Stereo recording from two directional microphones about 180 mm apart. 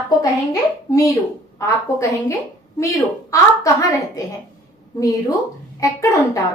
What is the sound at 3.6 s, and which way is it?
A woman's voice, 20° left (ahead or behind).